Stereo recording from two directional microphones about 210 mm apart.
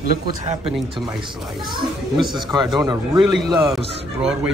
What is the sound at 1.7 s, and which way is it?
Speech, 20° right (ahead or behind).